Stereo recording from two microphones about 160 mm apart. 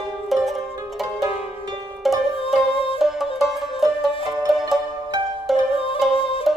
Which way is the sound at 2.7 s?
35° left (ahead or behind).